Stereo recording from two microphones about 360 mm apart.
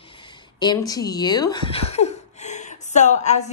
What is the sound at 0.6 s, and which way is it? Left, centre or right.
A woman's voice, centre.